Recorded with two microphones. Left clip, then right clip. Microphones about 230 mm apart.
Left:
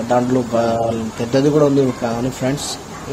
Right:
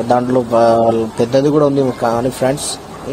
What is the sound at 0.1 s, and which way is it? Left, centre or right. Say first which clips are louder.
A man's voice: right 3 dB; right.